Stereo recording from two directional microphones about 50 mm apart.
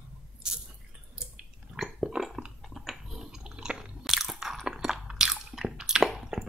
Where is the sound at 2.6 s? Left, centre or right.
Centre.